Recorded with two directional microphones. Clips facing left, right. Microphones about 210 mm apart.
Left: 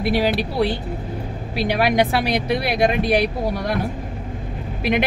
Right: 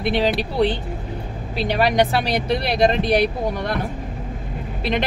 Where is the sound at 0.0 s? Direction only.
10° left (ahead or behind).